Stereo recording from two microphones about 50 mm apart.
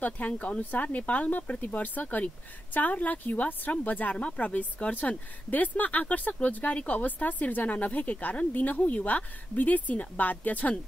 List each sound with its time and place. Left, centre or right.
0.0 s speech: left
5.5 s speech: left